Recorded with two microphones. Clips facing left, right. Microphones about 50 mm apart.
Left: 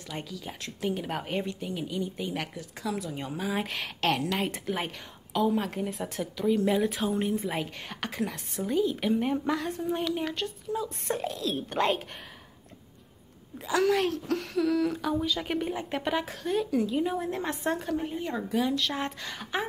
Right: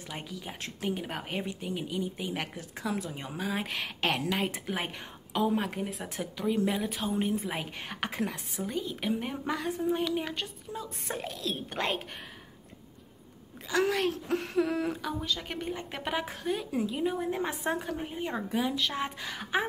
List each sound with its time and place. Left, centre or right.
0.1 s a woman's voice: centre
2.5 s speech: right
3.2 s a woman's voice: centre
5.3 s a woman's voice: centre
5.6 s a woman's voice: centre
6.1 s a woman's voice: centre
13.7 s a woman's voice: centre
14.1 s speech: right
15.0 s a woman's voice: centre
16.0 s a woman's voice: centre
18.2 s speech: right
18.6 s a woman's voice: centre